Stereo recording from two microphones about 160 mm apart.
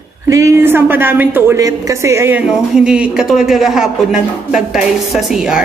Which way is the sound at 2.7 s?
5° right (ahead or behind).